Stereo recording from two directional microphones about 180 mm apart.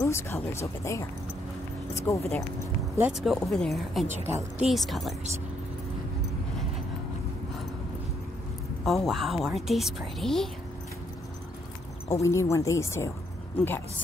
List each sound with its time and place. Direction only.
0.0 s speech: 15° left (ahead or behind)
3.0 s a woman's voice: 5° right (ahead or behind)
8.8 s a woman's voice: centre (ahead or behind)
12.1 s speech: 15° left (ahead or behind)